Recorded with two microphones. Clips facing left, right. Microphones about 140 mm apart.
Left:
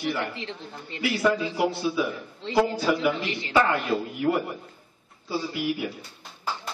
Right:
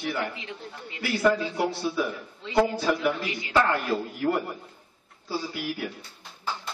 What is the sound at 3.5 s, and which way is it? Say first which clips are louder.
A man's voice: left 1 dB; 5° left (ahead or behind).